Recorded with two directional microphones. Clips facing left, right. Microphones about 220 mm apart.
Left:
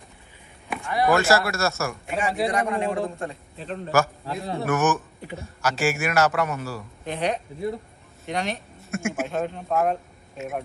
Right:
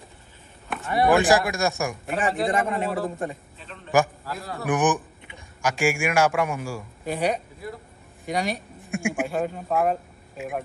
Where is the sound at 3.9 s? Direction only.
15° right (ahead or behind).